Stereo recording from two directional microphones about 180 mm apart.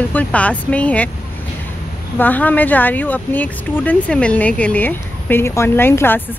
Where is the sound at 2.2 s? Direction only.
10° left (ahead or behind).